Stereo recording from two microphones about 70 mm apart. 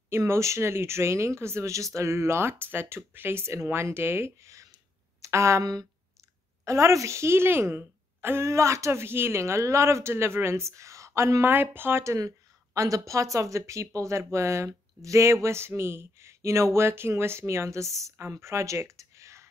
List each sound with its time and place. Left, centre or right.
0.1 s speech: right
5.6 s speech: right
6.6 s speech: right
11.4 s speech: right
12.0 s speech: right